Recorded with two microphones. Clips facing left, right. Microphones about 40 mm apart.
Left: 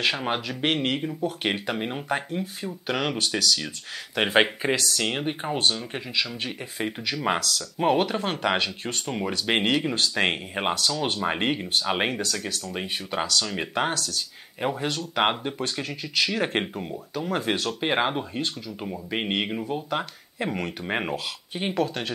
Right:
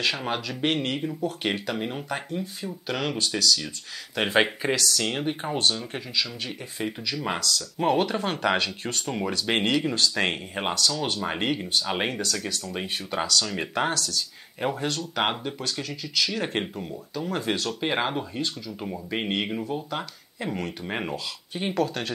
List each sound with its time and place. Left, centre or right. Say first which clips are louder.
0.0 s speech: left 2 dB; centre
7.8 s speech: left 1 dB; centre